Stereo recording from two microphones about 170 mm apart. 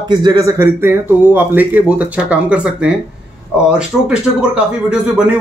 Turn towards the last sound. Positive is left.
turn(degrees=-5)  # may be behind; listen again after turning